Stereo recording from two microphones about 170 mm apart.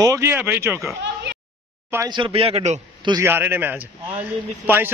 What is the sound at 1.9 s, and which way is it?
Speech, 15° right (ahead or behind).